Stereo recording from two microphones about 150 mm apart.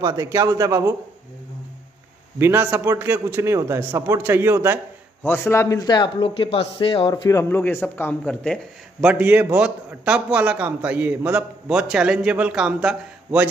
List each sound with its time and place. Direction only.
0.0 s a man's voice: 20° right (ahead or behind)
2.3 s a man's voice: 15° right (ahead or behind)
5.2 s a man's voice: 15° left (ahead or behind); by 7.2 s 35° left (ahead or behind)
7.2 s a man's voice: 15° left (ahead or behind)
9.0 s a man's voice: 10° right (ahead or behind)